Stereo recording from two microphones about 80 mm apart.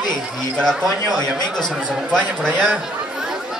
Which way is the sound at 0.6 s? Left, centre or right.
Centre.